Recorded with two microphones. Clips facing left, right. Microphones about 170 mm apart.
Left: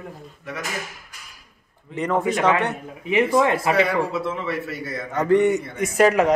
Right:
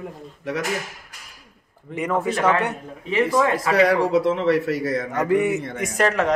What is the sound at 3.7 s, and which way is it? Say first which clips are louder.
A man's voice: right 3 dB; 90° right.